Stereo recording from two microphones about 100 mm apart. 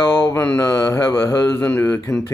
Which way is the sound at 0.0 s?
25° left (ahead or behind).